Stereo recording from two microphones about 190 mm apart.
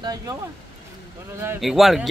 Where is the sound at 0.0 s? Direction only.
20° right (ahead or behind).